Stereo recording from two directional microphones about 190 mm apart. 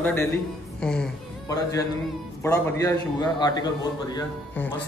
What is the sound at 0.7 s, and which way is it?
Music, 5° left (ahead or behind).